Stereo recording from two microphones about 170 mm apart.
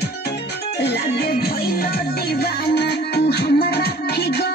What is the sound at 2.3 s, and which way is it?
Music, 75° left (ahead or behind).